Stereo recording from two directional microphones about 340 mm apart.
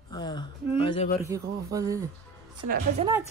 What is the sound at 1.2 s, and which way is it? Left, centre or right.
Speech, centre.